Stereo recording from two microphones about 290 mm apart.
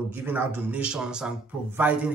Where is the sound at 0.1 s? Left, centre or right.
Centre.